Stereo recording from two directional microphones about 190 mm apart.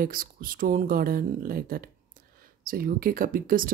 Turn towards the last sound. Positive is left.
turn(degrees=-45)  # may be behind; listen again after turning